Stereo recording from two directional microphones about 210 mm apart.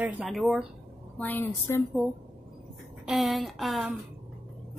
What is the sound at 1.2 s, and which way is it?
Speech, 10° left (ahead or behind).